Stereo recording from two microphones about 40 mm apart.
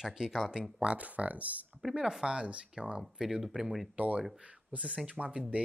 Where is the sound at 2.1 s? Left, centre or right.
Right.